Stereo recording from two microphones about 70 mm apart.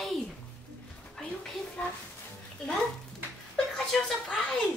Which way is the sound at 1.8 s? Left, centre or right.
Centre.